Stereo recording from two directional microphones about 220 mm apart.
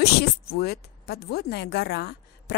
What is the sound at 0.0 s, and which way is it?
Speech, 45° left (ahead or behind).